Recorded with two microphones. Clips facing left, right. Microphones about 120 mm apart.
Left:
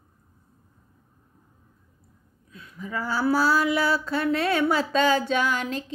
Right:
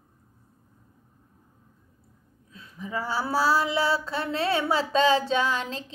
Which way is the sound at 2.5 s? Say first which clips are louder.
Even; 25° right (ahead or behind).